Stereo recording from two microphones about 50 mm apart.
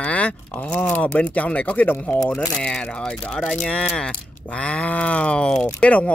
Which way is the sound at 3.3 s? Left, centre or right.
Centre.